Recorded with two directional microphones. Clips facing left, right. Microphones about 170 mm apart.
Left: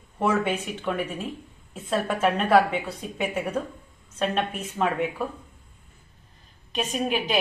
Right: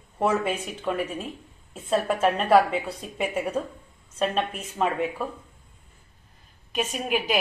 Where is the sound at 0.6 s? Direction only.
5° right (ahead or behind).